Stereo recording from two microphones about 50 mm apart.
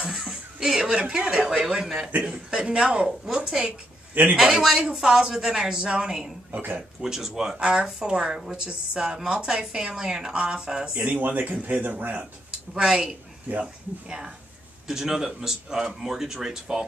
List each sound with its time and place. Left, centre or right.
0.0 s speech: centre
4.1 s a man's voice: right
4.4 s speech: centre
6.5 s speech: right
7.0 s speech: centre
11.1 s speech: right
12.7 s speech: centre